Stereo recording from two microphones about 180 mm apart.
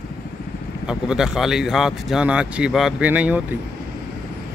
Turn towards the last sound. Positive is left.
turn(degrees=-10)  # may be behind; listen again after turning